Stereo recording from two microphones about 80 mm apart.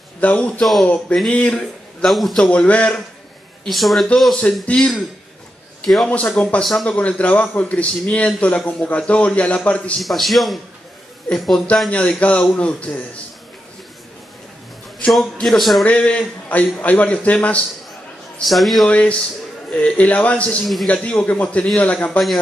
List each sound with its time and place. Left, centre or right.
0.2 s a man's voice: centre
3.6 s a man's voice: centre
4.6 s a man's voice: centre
6.0 s a man's voice: centre
6.6 s a man's voice: centre
7.0 s a man's voice: centre
10.0 s a man's voice: centre
11.9 s a man's voice: centre
15.4 s a man's voice: centre
15.8 s a man's voice: centre
18.4 s a man's voice: centre
18.9 s a man's voice: centre
20.6 s a man's voice: centre
20.9 s a man's voice: centre